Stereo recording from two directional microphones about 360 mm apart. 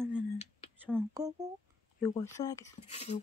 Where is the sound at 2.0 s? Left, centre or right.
Centre.